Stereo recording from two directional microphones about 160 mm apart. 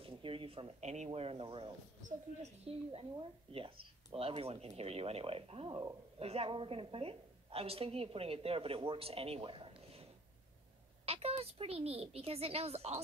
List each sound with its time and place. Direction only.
0.0 s a woman's voice: 35° right (ahead or behind)
11.1 s a woman's voice: 40° right (ahead or behind)